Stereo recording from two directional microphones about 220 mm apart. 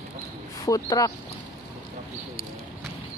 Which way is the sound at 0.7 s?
15° left (ahead or behind).